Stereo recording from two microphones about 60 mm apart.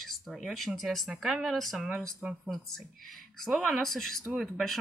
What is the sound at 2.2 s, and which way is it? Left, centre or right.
Speech, centre.